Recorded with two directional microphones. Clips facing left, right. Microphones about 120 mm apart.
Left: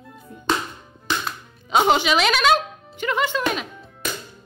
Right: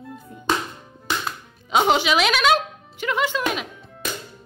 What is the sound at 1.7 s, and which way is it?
A woman's voice, centre (ahead or behind).